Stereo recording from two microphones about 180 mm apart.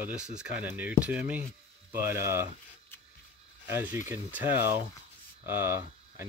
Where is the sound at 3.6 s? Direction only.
10° right (ahead or behind).